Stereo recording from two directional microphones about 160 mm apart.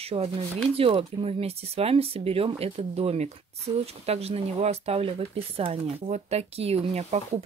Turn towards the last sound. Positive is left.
turn(degrees=-40)  # may be behind; listen again after turning